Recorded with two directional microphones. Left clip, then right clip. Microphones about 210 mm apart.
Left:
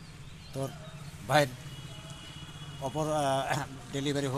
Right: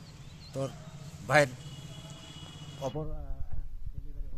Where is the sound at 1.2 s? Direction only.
5° right (ahead or behind).